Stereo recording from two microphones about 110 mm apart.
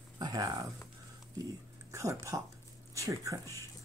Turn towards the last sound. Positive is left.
turn(degrees=-30)  # may be behind; listen again after turning